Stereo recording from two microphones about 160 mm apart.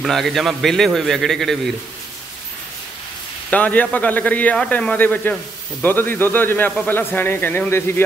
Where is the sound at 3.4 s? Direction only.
10° left (ahead or behind).